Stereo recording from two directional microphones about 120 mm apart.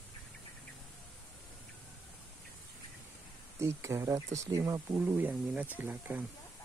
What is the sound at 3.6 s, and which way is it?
Speech, 25° right (ahead or behind).